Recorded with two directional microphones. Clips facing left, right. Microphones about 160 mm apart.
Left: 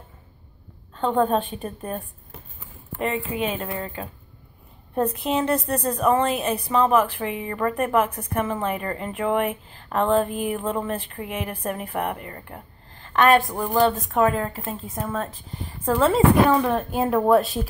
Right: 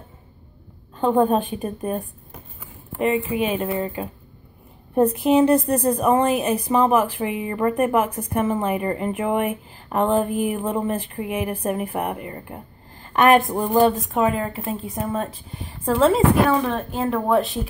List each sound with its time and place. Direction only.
1.1 s a woman's voice: 15° right (ahead or behind)
3.3 s a woman's voice: 10° right (ahead or behind)
15.8 s a woman's voice: centre (ahead or behind)
16.4 s a woman's voice: 10° left (ahead or behind)